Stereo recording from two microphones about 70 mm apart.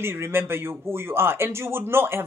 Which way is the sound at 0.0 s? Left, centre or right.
Right.